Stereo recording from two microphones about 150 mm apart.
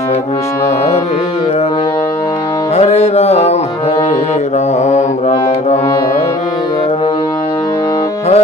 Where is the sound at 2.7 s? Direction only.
45° left (ahead or behind).